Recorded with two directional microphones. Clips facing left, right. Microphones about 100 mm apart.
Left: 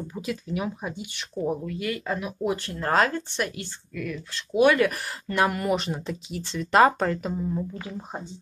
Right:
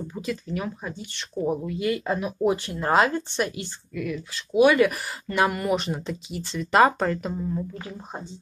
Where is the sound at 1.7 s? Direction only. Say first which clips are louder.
Right 4 dB; 25° right (ahead or behind).